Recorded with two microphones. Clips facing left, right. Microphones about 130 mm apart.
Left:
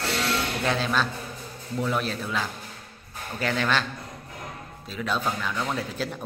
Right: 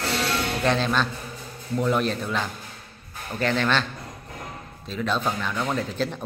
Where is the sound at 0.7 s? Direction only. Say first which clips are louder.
Right 3 dB; 5° left (ahead or behind).